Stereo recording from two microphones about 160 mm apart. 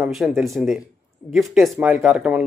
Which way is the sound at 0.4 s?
Centre (ahead or behind).